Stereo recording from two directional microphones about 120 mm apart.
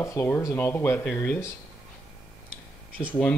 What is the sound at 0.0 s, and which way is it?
Speech, 20° left (ahead or behind).